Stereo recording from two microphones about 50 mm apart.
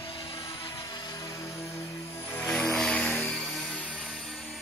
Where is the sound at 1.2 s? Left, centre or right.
Left.